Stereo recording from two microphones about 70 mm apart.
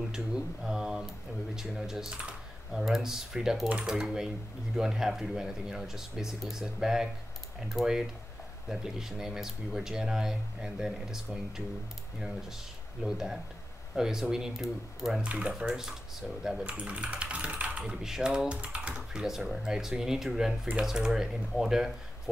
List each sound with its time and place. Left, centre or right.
0.1 s speech: centre
13.0 s speech: centre
15.2 s speech: centre
15.5 s speech: centre
16.6 s speech: centre